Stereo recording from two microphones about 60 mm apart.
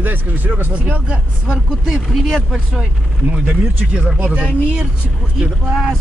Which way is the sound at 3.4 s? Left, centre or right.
Right.